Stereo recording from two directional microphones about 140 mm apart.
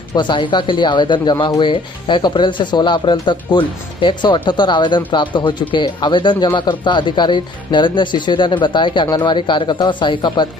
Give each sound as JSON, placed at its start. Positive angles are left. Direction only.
{"t": 0.1, "sound": "speech", "side_deg": 30}